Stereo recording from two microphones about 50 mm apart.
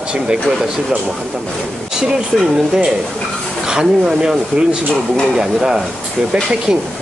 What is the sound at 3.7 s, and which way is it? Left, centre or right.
Speech, centre.